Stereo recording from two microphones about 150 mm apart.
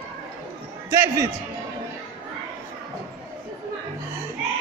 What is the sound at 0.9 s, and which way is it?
Speech, 20° right (ahead or behind).